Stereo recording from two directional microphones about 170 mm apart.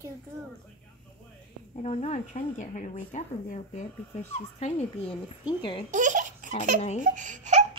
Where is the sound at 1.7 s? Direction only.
40° left (ahead or behind).